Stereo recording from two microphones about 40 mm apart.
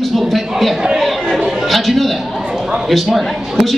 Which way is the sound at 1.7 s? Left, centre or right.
Centre.